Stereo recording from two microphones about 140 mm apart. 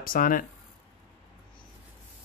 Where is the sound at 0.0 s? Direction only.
85° left.